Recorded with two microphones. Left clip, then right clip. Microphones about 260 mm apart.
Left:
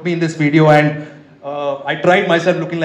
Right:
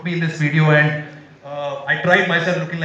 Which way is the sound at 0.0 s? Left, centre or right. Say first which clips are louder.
Left 5 dB; left.